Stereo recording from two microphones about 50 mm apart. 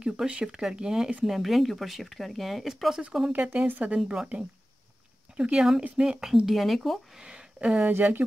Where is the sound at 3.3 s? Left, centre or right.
Right.